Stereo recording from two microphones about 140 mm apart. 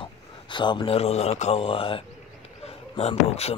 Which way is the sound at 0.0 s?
35° left (ahead or behind).